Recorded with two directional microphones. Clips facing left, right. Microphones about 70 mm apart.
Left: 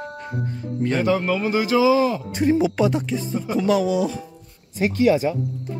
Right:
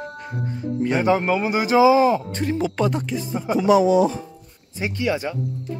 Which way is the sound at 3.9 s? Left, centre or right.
Right.